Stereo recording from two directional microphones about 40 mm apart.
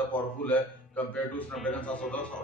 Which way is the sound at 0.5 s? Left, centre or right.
Left.